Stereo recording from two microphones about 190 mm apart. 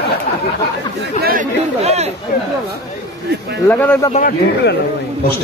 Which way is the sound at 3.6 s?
10° left (ahead or behind).